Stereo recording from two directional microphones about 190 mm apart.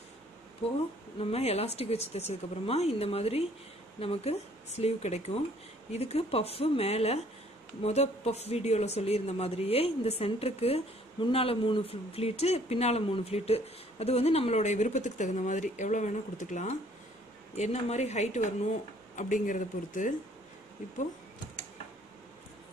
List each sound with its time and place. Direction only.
1.2 s speech: 35° left (ahead or behind)